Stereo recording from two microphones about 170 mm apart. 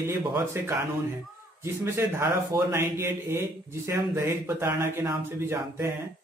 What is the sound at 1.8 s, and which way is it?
A man's voice, 15° right (ahead or behind).